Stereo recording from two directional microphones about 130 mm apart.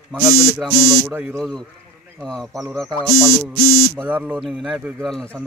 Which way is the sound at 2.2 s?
Centre (ahead or behind).